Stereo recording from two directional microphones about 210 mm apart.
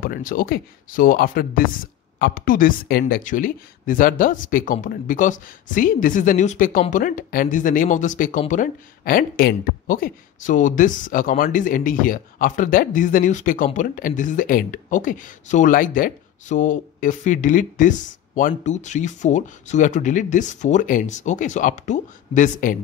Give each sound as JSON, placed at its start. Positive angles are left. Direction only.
{"t": 0.0, "sound": "speech", "side_deg": 40}